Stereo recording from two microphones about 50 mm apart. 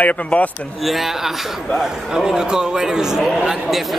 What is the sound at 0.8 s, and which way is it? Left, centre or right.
A man's voice, centre.